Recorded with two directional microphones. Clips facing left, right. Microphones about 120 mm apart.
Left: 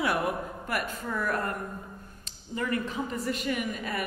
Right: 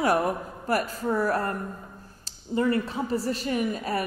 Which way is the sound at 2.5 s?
30° right (ahead or behind).